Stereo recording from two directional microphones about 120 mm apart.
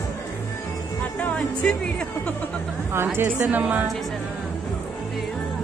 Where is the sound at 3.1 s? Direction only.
15° right (ahead or behind).